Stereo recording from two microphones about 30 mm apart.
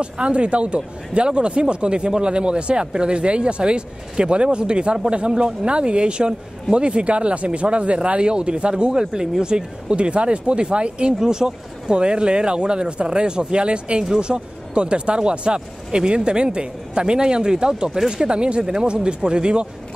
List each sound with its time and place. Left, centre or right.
0.0 s speech: right
9.0 s speech: centre; by 11.1 s right
11.1 s speech: right